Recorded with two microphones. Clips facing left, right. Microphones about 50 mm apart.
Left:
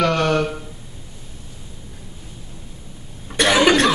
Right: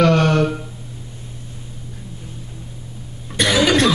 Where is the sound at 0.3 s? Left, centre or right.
Centre.